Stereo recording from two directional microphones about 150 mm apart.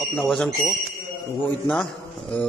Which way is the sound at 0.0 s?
Centre (ahead or behind).